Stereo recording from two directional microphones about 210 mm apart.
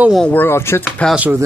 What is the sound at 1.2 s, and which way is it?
Speech, 10° right (ahead or behind).